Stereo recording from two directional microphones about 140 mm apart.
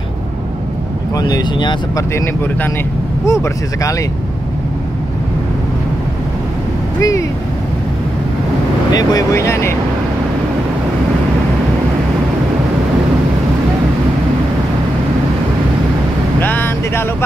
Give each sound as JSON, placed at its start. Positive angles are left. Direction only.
{"t": 1.1, "sound": "speech", "side_deg": 30}
{"t": 2.1, "sound": "speech", "side_deg": 15}
{"t": 7.0, "sound": "speech", "side_deg": 25}
{"t": 8.9, "sound": "speech", "side_deg": 25}
{"t": 16.3, "sound": "vehicle", "side_deg": 15}